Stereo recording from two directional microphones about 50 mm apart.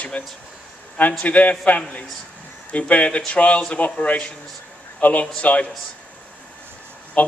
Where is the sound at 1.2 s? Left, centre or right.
Left.